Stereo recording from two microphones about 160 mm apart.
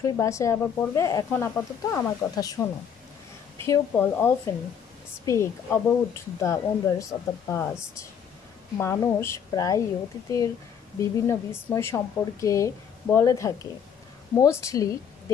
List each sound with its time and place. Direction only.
0.0 s a woman's voice: 20° left (ahead or behind)
8.7 s speech: 15° left (ahead or behind)
11.0 s a woman's voice: 15° left (ahead or behind)